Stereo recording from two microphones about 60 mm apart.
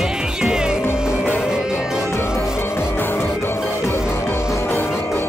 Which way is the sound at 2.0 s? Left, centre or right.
Left.